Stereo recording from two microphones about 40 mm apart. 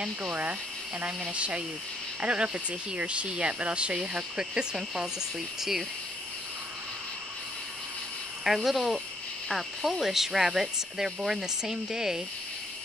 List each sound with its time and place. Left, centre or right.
0.2 s speech: right; by 5.1 s centre
5.6 s speech: centre
8.6 s speech: centre